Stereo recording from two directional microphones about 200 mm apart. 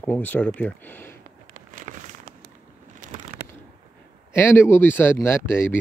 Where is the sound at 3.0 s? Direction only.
40° right (ahead or behind).